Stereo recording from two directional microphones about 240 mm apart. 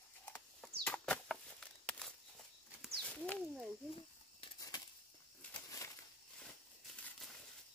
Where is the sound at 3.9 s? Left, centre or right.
Centre.